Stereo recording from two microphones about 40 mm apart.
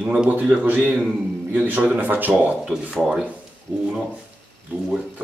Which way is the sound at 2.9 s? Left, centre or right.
Centre.